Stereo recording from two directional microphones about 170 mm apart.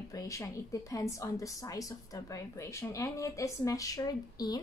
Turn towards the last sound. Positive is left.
turn(degrees=25)  # may be behind; listen again after turning